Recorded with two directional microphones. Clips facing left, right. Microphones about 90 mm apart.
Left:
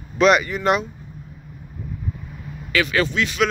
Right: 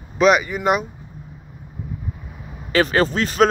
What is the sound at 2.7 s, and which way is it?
Speech, 40° right (ahead or behind).